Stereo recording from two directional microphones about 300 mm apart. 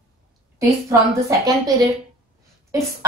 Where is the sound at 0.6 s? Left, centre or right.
Centre.